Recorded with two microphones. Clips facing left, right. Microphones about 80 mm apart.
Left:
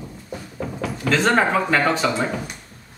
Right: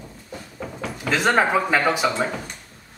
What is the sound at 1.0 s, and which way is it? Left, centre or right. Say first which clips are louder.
Speech: left 1 dB; centre.